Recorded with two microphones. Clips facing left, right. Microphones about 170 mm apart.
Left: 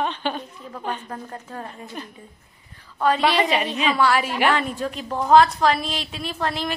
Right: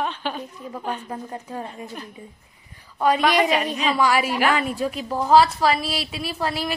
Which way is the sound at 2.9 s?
10° right (ahead or behind).